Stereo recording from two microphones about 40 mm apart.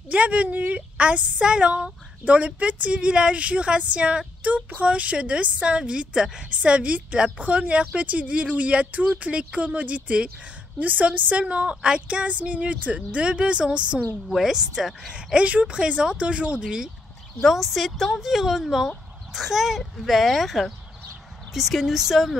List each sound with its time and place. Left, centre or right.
0.1 s speech: right
0.9 s speech: right
6.5 s speech: right
10.8 s speech: right
14.3 s speech: centre
15.3 s speech: right
16.6 s speech: centre
17.4 s speech: centre